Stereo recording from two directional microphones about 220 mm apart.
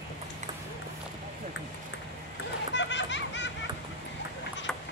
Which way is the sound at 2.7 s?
55° left (ahead or behind).